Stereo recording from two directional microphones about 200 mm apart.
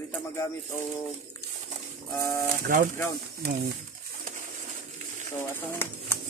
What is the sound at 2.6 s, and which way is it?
Speech, 45° right (ahead or behind).